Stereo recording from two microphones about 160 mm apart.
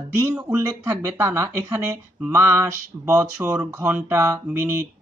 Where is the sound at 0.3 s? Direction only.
10° right (ahead or behind).